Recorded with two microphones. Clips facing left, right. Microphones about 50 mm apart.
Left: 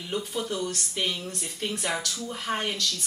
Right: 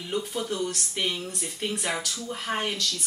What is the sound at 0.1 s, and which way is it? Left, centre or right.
Speech, centre.